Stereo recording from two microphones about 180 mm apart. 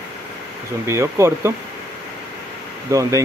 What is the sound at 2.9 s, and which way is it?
Speech, 20° right (ahead or behind).